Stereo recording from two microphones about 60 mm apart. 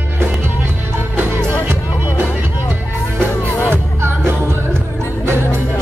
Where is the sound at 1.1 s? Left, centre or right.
Right.